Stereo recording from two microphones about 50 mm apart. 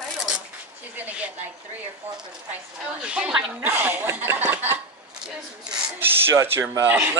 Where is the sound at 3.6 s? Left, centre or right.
Right.